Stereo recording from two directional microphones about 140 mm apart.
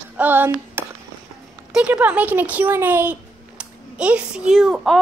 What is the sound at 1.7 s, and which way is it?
A child's voice, 10° right (ahead or behind).